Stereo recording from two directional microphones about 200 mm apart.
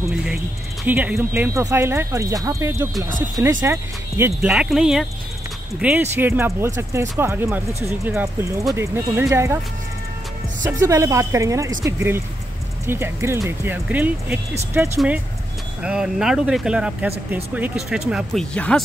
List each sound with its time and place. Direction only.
0.8 s speech: 10° right (ahead or behind)
10.6 s speech: 15° right (ahead or behind)
15.8 s speech: 5° right (ahead or behind)